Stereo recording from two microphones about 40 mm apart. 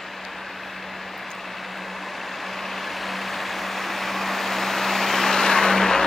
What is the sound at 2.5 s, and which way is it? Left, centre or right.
Vehicle, centre.